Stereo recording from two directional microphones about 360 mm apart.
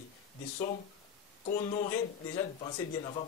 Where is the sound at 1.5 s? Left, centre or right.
Left.